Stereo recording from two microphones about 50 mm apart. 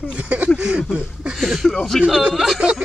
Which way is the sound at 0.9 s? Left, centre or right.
Centre.